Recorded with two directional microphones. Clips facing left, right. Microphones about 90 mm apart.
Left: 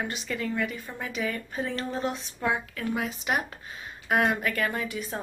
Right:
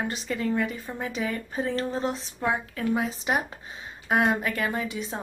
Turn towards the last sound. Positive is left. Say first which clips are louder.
# right 2 dB
turn(degrees=-20)  # may be behind; listen again after turning